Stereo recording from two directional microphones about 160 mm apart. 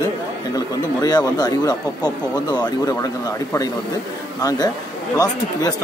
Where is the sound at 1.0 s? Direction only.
25° left (ahead or behind).